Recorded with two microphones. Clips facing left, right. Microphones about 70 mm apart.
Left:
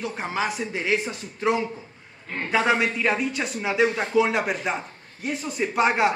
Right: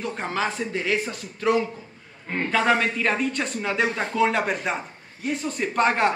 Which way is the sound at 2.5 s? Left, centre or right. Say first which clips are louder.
Even; centre.